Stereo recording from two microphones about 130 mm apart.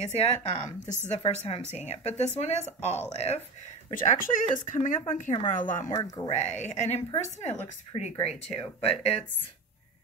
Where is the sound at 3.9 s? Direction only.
90° left.